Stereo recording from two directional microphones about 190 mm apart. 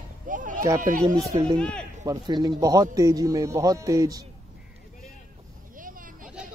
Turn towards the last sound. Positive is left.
turn(degrees=-45)  # may be behind; listen again after turning